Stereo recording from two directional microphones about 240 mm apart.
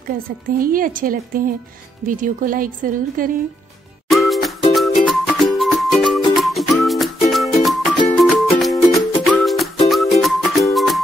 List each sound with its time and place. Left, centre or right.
0.1 s speech: right
4.1 s music: centre